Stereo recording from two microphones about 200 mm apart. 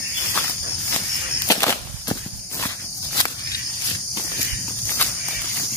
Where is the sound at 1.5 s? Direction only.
15° left (ahead or behind).